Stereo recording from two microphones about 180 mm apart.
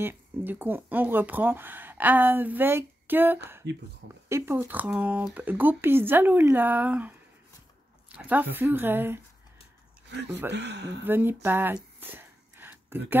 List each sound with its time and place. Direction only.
0.0 s speech: 10° right (ahead or behind)
3.6 s speech: 70° right (ahead or behind)
4.3 s speech: 15° right (ahead or behind)
8.2 s speech: 10° right (ahead or behind)
10.5 s speech: 70° right (ahead or behind)
11.1 s speech: 10° right (ahead or behind)
11.4 s a sound: 10° right (ahead or behind)